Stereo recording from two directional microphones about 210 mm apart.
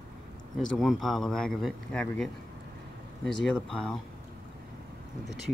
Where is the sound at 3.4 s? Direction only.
5° left (ahead or behind).